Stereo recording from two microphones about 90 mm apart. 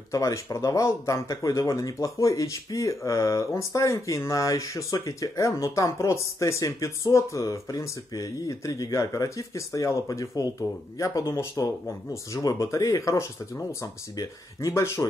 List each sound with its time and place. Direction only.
0.1 s speech: 35° left (ahead or behind)